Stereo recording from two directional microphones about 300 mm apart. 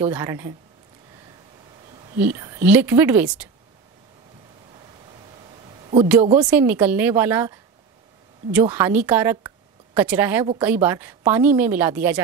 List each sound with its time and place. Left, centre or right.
0.0 s a woman's voice: centre
2.1 s a woman's voice: centre
6.2 s speech: right
6.5 s a woman's voice: centre
8.5 s a woman's voice: centre